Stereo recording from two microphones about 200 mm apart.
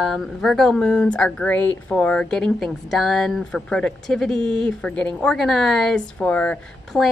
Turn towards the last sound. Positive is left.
turn(degrees=5)  # may be behind; listen again after turning